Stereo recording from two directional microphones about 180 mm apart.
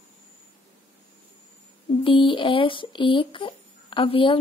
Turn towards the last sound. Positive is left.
turn(degrees=30)  # may be behind; listen again after turning